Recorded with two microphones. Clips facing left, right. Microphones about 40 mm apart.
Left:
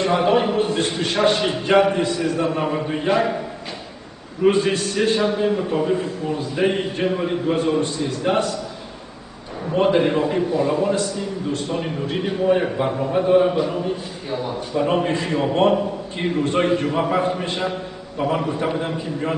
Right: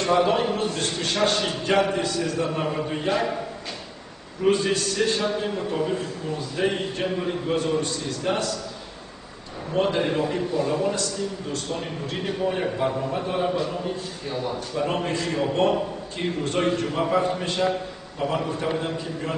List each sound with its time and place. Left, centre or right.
0.0 s a man's voice: left
4.5 s a man's voice: left
9.8 s a man's voice: left
10.5 s a man's voice: left